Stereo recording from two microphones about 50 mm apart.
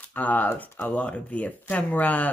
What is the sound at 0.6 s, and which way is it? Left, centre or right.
Speech, left.